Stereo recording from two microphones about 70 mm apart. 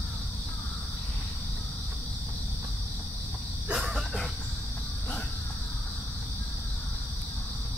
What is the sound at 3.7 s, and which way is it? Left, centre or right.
Cricket, centre.